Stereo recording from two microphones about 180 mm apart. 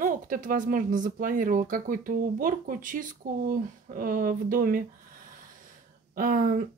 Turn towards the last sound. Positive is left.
turn(degrees=-50)  # may be behind; listen again after turning